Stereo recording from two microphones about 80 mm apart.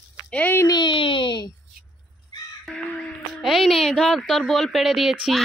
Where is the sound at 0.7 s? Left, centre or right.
Left.